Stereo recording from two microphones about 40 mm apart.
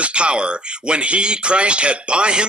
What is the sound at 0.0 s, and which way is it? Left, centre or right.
Speech, right.